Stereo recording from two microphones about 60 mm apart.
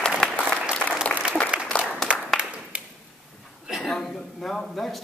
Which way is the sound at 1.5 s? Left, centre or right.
Centre.